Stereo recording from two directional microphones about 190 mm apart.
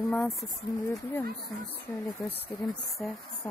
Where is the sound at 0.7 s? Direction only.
20° left (ahead or behind).